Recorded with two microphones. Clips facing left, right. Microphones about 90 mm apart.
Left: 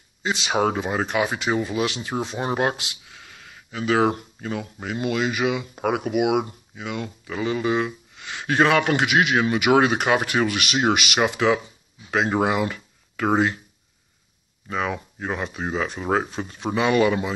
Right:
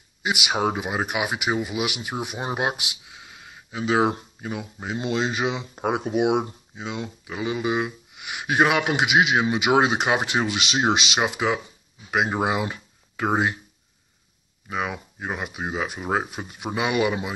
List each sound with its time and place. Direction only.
0.2 s speech: 15° right (ahead or behind)
14.7 s speech: 10° right (ahead or behind)